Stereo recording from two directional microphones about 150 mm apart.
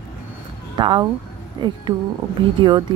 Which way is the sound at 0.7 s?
30° right (ahead or behind).